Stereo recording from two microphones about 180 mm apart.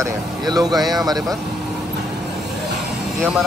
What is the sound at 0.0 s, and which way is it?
Speech, 20° right (ahead or behind).